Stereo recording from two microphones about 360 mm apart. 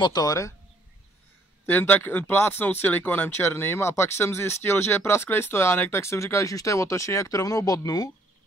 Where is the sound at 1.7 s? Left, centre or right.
Centre.